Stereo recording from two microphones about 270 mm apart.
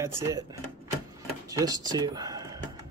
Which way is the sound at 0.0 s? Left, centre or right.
Centre.